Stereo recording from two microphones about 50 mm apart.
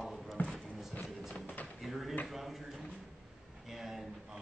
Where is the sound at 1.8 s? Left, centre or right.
Centre.